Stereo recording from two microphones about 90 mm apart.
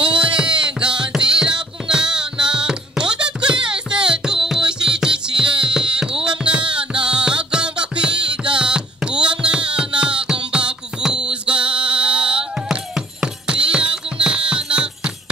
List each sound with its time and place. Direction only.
0.1 s music: 10° right (ahead or behind)
11.4 s music: 75° right (ahead or behind)
11.7 s music: 10° right (ahead or behind)